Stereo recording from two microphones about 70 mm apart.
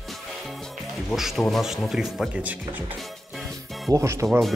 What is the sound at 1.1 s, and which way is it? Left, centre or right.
A man's voice, centre.